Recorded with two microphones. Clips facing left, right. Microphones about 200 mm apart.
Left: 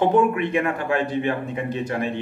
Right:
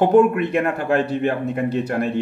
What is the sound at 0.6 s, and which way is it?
Speech, 55° right (ahead or behind).